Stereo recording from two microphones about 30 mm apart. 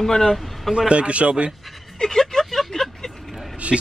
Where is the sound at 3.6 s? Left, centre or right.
Right.